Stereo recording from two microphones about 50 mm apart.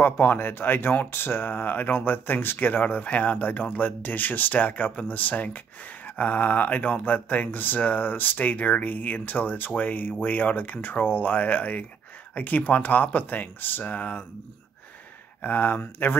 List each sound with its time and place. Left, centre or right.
0.0 s speech: left
15.4 s speech: left